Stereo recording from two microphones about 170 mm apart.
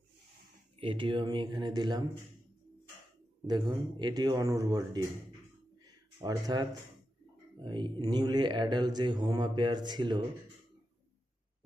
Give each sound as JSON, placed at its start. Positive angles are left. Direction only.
{"t": 0.7, "sound": "mantra", "side_deg": -30}
{"t": 3.4, "sound": "mantra", "side_deg": -25}
{"t": 6.2, "sound": "mantra", "side_deg": -20}